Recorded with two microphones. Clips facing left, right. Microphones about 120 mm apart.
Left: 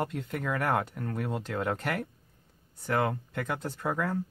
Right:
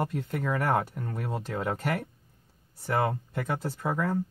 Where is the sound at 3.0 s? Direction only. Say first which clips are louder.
Right 1 dB; 25° right (ahead or behind).